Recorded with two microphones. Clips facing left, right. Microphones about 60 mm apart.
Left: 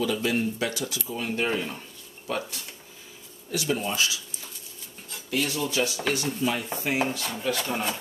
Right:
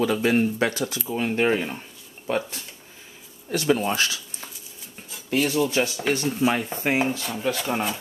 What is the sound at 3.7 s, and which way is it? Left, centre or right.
Speech, right.